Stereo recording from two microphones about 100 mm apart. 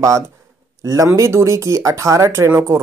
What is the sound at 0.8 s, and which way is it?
Speech, 30° right (ahead or behind).